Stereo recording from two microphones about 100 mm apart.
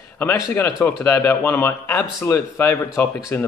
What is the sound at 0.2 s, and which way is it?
A man's voice, 20° left (ahead or behind).